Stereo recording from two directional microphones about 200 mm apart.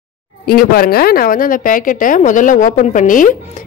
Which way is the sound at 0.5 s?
50° left (ahead or behind).